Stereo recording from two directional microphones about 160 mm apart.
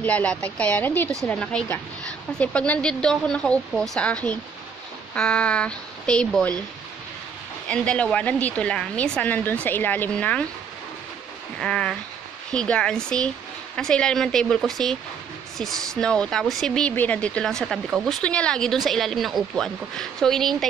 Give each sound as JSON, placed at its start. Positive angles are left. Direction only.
{"t": 0.0, "sound": "a woman's voice", "side_deg": 10}
{"t": 7.6, "sound": "a woman's voice", "side_deg": 5}
{"t": 11.6, "sound": "speech", "side_deg": 5}